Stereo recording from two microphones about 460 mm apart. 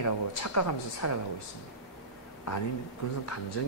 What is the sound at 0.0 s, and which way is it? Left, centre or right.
Speech, left.